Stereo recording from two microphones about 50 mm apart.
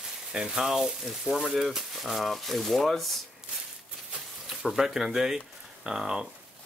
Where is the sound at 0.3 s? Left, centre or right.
Centre.